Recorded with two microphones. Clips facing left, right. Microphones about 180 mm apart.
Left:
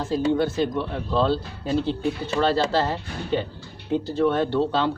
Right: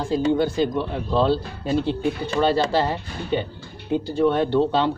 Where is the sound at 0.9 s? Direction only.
Centre (ahead or behind).